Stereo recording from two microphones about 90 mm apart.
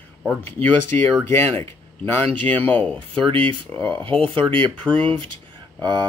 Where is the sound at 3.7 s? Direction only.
15° left (ahead or behind).